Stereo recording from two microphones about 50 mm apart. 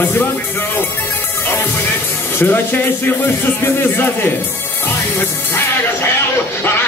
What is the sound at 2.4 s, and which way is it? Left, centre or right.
Speech, left.